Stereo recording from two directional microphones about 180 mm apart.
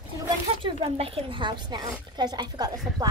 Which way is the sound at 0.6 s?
30° right (ahead or behind).